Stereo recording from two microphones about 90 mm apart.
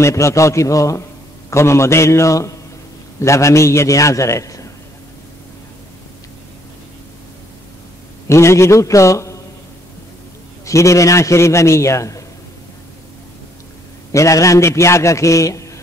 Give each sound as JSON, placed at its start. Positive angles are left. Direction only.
{"t": 0.0, "sound": "a man's voice", "side_deg": 35}
{"t": 8.3, "sound": "a man's voice", "side_deg": 30}
{"t": 10.6, "sound": "a man's voice", "side_deg": 35}
{"t": 14.1, "sound": "a man's voice", "side_deg": 35}